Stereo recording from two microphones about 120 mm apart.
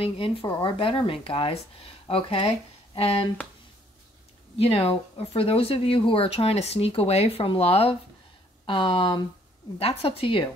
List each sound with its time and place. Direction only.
0.0 s speech: 50° left (ahead or behind)
0.5 s speech: 40° left (ahead or behind)
4.6 s speech: 55° left (ahead or behind)
9.8 s speech: 55° left (ahead or behind)